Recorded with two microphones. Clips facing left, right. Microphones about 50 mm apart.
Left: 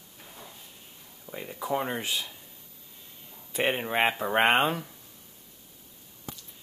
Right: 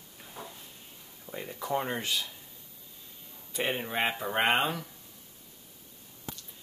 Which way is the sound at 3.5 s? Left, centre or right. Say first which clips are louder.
Left 4 dB; left.